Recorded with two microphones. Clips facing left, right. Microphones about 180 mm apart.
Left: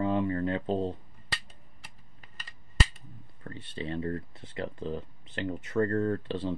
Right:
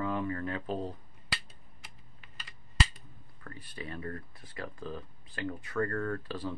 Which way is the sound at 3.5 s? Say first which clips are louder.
Left 6 dB; 25° left (ahead or behind).